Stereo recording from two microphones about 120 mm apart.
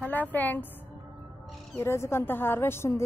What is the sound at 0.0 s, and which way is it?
Speech, 15° left (ahead or behind).